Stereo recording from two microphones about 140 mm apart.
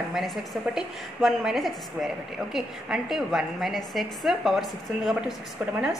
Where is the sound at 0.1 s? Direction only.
Centre (ahead or behind).